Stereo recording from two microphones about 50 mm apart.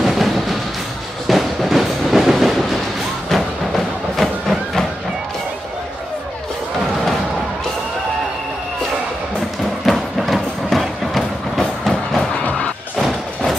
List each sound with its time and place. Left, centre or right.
0.0 s music: centre
1.2 s train: centre
3.3 s music: centre
9.8 s music: centre
12.9 s thump: centre